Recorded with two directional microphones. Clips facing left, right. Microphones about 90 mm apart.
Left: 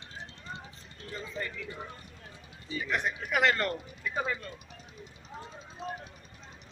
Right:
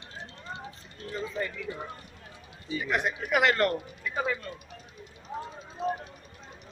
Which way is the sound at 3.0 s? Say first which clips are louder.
Right 2 dB; 10° right (ahead or behind).